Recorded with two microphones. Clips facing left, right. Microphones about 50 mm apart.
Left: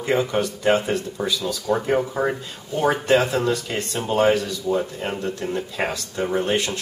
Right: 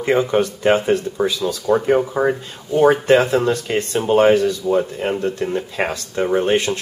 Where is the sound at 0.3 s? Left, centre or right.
Right.